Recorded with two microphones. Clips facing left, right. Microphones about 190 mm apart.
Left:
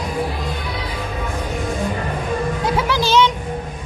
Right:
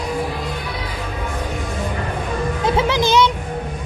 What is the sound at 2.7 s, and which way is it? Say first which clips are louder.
Music: right 3 dB; 20° right (ahead or behind).